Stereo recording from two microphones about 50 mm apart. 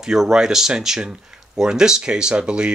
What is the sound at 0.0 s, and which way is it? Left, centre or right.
Speech, centre.